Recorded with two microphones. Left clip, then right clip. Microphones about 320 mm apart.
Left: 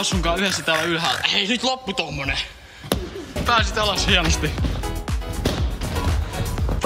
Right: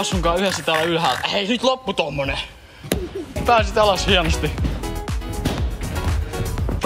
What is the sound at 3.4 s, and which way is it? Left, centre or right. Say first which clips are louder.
Music: right 4 dB; centre.